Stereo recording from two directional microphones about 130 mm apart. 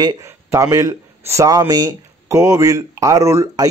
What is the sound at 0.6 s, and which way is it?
Speech, 20° right (ahead or behind).